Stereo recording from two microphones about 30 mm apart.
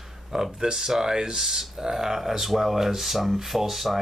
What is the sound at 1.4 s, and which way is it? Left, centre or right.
Speech, centre.